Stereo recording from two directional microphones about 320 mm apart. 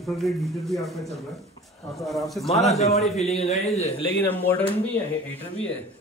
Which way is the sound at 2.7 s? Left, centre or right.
Centre.